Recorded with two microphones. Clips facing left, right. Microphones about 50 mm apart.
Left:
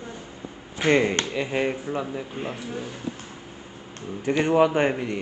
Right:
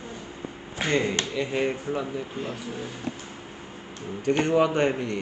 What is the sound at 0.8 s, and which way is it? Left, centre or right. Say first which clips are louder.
Speech: left 4 dB; left.